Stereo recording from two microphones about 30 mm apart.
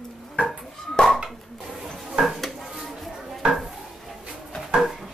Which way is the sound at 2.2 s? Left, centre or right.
Right.